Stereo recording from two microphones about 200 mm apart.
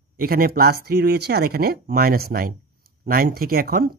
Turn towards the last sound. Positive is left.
turn(degrees=-50)  # may be behind; listen again after turning